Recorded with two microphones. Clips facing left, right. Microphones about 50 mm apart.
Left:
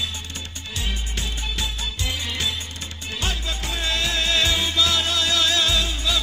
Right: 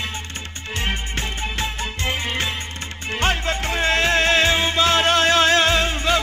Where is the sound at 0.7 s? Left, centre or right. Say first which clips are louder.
Right 5 dB; right.